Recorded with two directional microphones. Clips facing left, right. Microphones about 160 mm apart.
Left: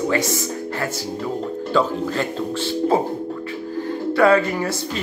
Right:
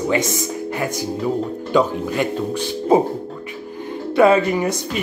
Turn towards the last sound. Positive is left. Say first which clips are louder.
# right 3 dB
turn(degrees=-15)  # may be behind; listen again after turning